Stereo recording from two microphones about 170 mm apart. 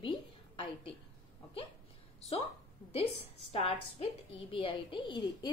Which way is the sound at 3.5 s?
35° left (ahead or behind).